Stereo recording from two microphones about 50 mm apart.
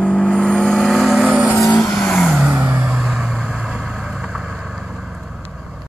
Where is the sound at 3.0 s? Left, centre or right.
Centre.